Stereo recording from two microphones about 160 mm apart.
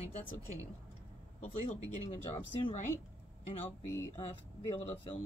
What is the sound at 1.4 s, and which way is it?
Speech, 50° left (ahead or behind).